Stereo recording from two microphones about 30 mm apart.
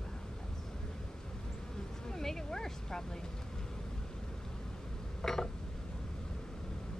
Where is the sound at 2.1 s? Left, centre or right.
Centre.